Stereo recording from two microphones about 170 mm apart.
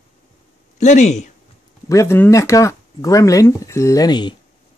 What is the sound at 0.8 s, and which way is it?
Speech, 45° left (ahead or behind).